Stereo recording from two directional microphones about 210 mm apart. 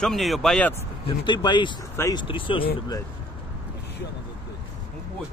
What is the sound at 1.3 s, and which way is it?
Speech, 20° left (ahead or behind).